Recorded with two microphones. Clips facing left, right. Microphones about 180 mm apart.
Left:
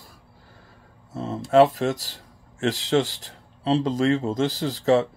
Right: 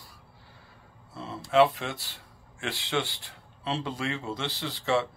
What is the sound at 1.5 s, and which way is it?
Speech, 40° left (ahead or behind).